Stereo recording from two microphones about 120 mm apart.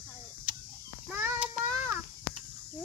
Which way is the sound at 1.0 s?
15° right (ahead or behind).